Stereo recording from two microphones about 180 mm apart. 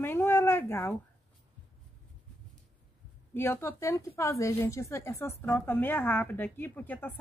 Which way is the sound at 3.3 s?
15° left (ahead or behind).